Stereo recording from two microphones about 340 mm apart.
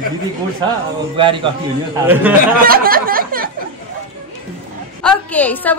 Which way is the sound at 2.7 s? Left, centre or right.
Right.